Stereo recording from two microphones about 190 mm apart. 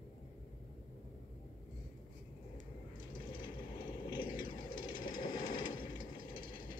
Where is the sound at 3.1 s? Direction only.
25° left (ahead or behind).